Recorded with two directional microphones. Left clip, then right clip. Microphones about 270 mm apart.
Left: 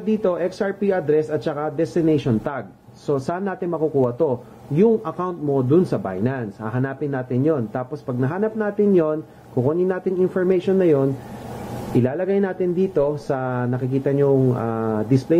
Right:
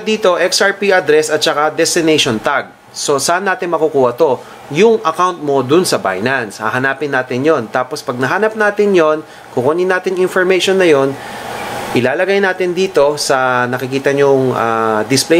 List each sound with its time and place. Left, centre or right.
0.0 s speech: centre
3.7 s speech: right
5.0 s speech: centre
14.3 s speech: right
14.6 s speech: centre